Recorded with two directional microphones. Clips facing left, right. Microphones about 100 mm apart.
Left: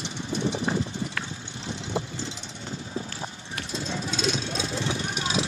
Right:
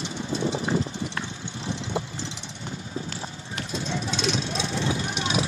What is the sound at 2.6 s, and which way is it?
Vehicle, 30° left (ahead or behind).